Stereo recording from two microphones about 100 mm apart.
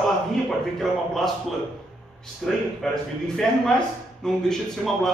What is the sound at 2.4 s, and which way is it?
A man's voice, 5° left (ahead or behind).